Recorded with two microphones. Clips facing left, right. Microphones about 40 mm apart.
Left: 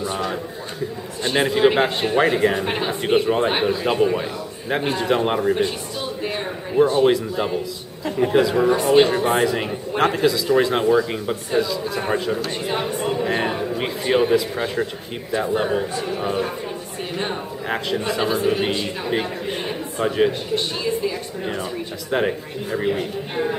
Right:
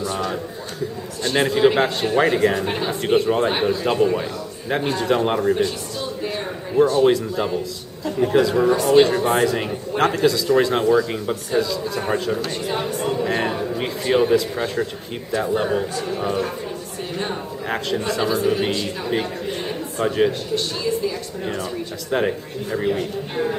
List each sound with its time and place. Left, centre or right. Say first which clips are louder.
0.0 s a man's voice: even; centre
2.6 s speech: even; centre
5.6 s a sound: even; left
7.1 s a man's voice: even; centre
8.3 s speech: even; centre
12.6 s speech: left 1 dB; centre
17.6 s speech: even; centre
20.5 s speech: even; left
22.1 s speech: even; centre